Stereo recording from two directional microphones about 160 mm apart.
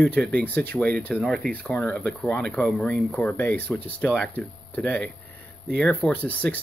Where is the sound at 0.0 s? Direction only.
10° left (ahead or behind).